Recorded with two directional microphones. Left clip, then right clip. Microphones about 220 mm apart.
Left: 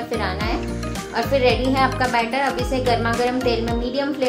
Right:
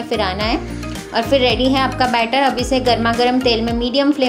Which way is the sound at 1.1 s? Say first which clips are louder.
Right 3 dB; 40° right (ahead or behind).